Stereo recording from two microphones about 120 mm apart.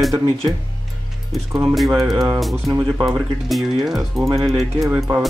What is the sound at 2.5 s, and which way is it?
Speech, 30° right (ahead or behind).